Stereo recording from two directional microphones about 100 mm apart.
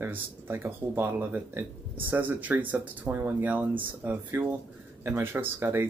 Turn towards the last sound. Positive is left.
turn(degrees=-20)  # may be behind; listen again after turning